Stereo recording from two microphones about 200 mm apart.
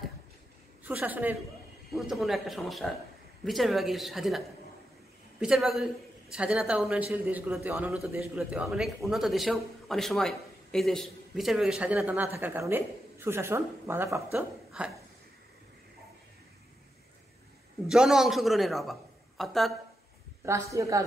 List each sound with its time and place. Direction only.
0.8 s a man's voice: 10° right (ahead or behind)
17.8 s a man's voice: 5° right (ahead or behind)
20.4 s a man's voice: 15° right (ahead or behind)